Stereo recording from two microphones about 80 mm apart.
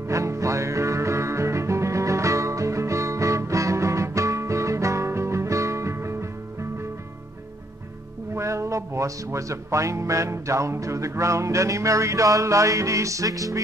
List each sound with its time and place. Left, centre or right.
0.1 s music: right
8.4 s music: right